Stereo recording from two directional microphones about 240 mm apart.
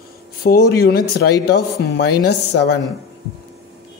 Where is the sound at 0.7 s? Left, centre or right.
Left.